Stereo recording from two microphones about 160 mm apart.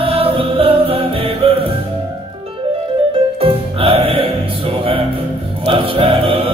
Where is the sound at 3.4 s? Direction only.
35° right (ahead or behind).